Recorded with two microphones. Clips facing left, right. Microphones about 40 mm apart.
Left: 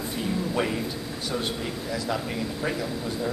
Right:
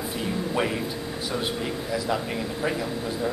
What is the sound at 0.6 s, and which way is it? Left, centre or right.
A man's voice, centre.